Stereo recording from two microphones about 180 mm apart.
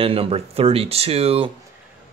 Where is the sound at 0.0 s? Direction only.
30° right (ahead or behind).